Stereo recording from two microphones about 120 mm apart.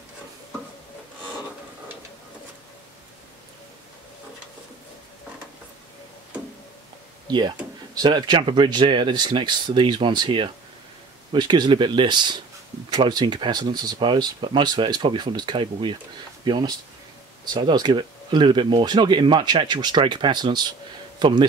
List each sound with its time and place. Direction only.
7.2 s speech: 40° right (ahead or behind)